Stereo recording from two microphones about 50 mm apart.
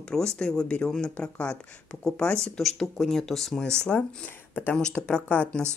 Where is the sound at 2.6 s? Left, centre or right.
Centre.